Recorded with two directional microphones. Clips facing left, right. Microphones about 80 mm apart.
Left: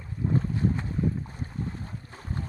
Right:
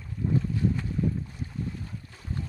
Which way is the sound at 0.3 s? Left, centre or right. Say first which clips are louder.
Even; left.